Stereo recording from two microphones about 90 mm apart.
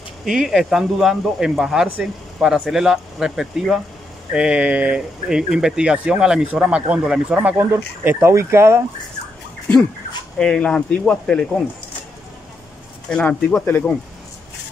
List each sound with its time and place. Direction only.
0.2 s speech: 5° right (ahead or behind)
7.5 s speech: 25° right (ahead or behind)
10.4 s speech: 10° left (ahead or behind)
13.1 s speech: 10° left (ahead or behind)